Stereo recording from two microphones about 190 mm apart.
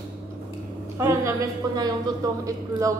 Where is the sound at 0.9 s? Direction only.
15° right (ahead or behind).